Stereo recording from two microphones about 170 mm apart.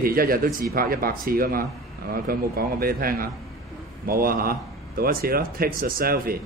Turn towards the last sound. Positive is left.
turn(degrees=-60)  # may be behind; listen again after turning